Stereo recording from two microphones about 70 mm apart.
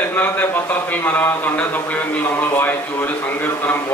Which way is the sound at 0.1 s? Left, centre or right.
Left.